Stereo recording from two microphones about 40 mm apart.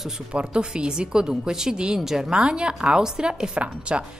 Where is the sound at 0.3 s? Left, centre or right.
Right.